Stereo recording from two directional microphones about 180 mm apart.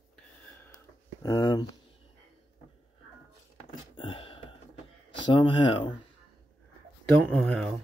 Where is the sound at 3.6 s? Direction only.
30° left (ahead or behind).